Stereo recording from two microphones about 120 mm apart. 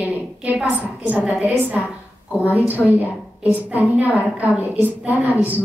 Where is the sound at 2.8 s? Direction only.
15° right (ahead or behind).